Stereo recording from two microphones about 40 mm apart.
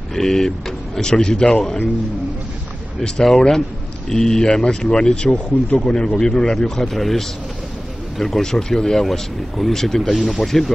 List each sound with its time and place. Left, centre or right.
0.1 s speech: centre
3.0 s speech: centre; by 5.9 s left
5.9 s speech: centre